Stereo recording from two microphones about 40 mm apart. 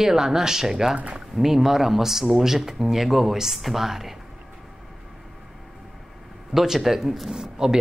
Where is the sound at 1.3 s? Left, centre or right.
Centre.